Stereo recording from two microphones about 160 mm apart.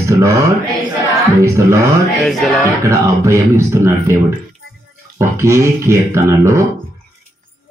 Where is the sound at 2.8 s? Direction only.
15° right (ahead or behind).